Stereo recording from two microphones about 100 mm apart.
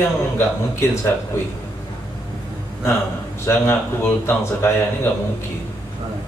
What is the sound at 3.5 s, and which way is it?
A man's voice, 25° left (ahead or behind).